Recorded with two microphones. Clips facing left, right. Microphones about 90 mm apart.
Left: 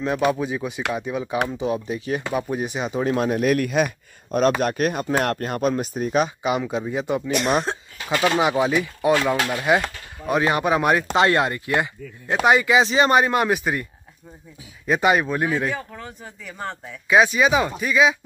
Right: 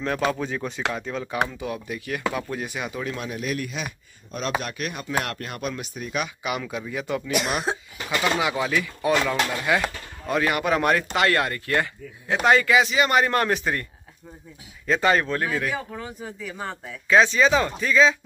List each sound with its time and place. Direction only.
0.0 s speech: 15° left (ahead or behind)
1.5 s speech: 25° left (ahead or behind)
3.1 s speech: 50° left (ahead or behind); by 7.2 s 25° left (ahead or behind)
7.2 s speech: 5° right (ahead or behind)
8.4 s speech: 25° left (ahead or behind)
12.8 s speech: 30° left (ahead or behind)
13.2 s speech: 15° left (ahead or behind)
14.9 s speech: 15° left (ahead or behind)
15.7 s speech: 5° right (ahead or behind)
17.1 s speech: 15° left (ahead or behind)